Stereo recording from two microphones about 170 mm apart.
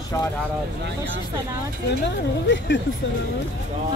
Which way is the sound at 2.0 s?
90° left.